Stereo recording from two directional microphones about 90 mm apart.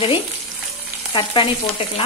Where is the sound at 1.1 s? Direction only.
90° left.